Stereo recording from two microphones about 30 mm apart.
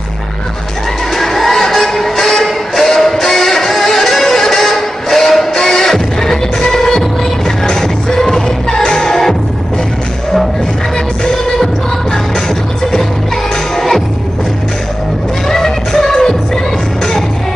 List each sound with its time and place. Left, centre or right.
1.1 s music: centre
13.7 s music: centre
15.4 s music: centre